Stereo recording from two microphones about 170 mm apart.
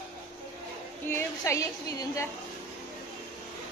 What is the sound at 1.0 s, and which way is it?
A woman's voice, 15° left (ahead or behind).